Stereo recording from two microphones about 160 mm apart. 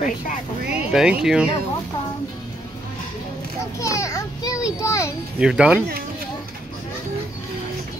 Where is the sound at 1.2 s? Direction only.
5° right (ahead or behind).